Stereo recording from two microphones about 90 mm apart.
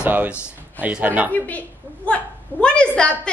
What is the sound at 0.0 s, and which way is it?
A man's voice, 20° right (ahead or behind).